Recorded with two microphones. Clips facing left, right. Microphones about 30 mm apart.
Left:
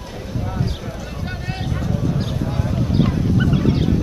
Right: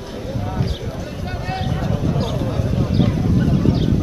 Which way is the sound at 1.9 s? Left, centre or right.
Centre.